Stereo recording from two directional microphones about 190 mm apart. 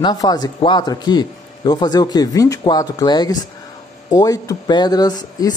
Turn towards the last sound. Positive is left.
turn(degrees=20)  # may be behind; listen again after turning